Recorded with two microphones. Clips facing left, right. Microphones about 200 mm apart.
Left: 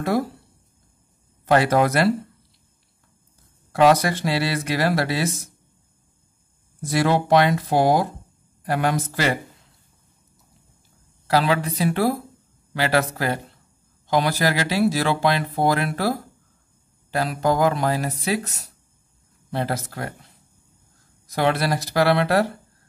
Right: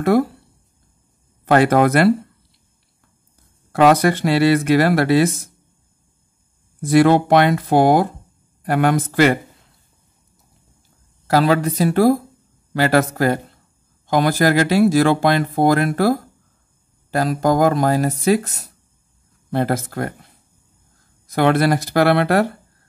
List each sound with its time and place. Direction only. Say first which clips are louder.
0.0 s speech: right 7 dB; 60° right (ahead or behind)
1.4 s speech: right 4 dB; 55° right (ahead or behind)
3.7 s speech: right 3 dB; 55° right (ahead or behind)
6.8 s speech: right 8 dB; 55° right (ahead or behind)
11.2 s speech: right 5 dB; 45° right (ahead or behind)
19.5 s speech: right 6 dB; 50° right (ahead or behind)
21.3 s speech: right 6 dB; 55° right (ahead or behind)